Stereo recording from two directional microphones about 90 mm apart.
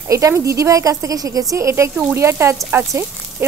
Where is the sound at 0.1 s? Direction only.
35° right (ahead or behind).